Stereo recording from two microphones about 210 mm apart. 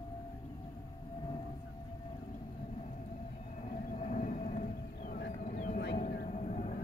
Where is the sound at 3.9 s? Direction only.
35° left (ahead or behind).